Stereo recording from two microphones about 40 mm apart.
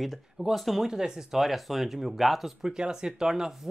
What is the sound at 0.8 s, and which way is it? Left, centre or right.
Speech, centre.